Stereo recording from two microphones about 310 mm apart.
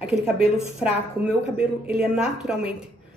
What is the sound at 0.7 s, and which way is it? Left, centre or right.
Speech, centre.